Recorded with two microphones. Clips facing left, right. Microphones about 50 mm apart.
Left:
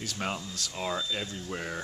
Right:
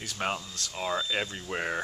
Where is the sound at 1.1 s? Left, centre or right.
Right.